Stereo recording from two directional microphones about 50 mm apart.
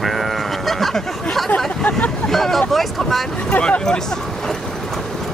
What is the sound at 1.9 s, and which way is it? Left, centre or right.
Hubbub, left.